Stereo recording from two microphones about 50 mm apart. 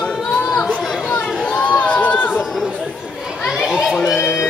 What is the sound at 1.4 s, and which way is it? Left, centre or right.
Speech, left.